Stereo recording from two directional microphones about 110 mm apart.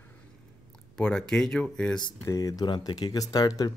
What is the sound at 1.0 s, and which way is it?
Speech, 10° left (ahead or behind).